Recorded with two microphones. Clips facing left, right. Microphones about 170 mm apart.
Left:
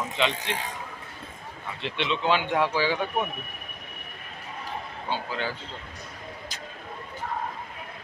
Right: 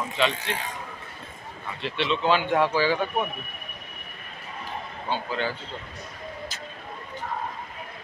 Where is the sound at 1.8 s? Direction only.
20° left (ahead or behind).